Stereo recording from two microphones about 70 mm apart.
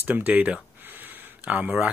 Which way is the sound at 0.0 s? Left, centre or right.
Right.